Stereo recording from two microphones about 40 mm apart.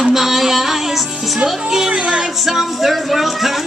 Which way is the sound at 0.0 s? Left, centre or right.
Centre.